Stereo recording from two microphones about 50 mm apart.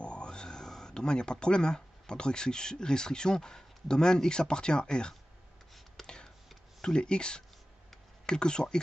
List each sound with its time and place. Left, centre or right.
0.0 s speech: left
5.9 s a sound: centre
6.8 s speech: centre